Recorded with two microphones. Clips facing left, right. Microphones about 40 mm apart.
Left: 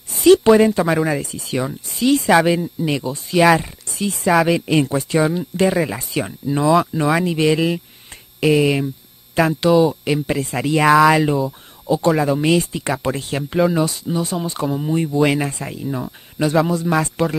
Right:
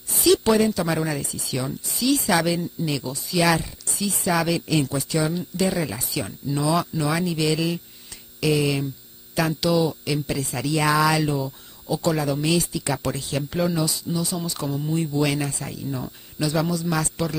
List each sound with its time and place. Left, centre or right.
0.2 s speech: left
0.5 s speech: left
1.2 s speech: left
4.5 s speech: left
11.0 s speech: left
13.4 s speech: left
13.7 s speech: left